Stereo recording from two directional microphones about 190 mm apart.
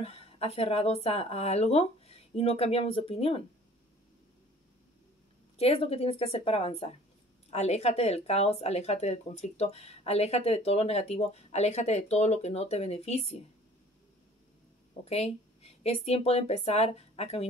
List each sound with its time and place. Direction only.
0.0 s speech: 30° left (ahead or behind)
5.6 s speech: 30° left (ahead or behind)
15.0 s speech: 35° left (ahead or behind)